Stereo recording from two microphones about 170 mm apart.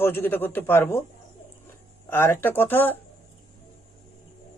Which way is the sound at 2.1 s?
15° left (ahead or behind).